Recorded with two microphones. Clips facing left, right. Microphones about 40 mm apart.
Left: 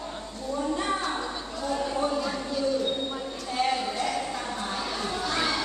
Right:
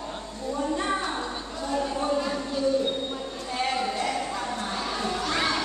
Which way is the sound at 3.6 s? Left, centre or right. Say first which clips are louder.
Even; centre.